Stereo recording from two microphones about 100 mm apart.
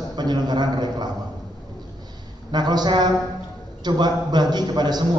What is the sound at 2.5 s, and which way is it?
A man's voice, 45° right (ahead or behind).